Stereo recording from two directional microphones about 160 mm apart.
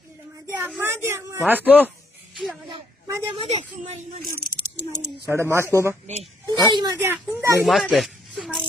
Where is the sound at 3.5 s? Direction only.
45° right (ahead or behind).